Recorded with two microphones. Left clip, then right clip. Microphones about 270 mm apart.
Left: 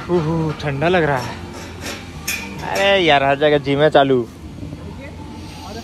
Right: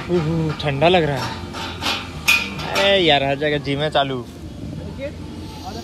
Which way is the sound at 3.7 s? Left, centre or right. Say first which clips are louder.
Left 7 dB; left.